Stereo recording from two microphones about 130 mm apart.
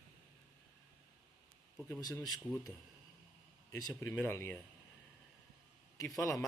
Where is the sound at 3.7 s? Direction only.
25° left (ahead or behind).